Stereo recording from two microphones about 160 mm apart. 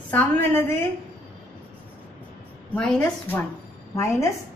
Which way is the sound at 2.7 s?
10° left (ahead or behind).